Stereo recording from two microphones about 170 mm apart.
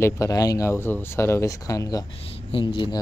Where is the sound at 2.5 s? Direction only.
30° left (ahead or behind).